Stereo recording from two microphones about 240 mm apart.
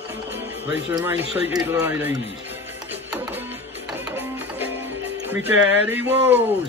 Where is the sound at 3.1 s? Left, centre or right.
Centre.